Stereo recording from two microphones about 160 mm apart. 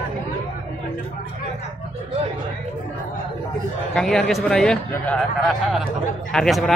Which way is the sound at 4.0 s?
5° left (ahead or behind).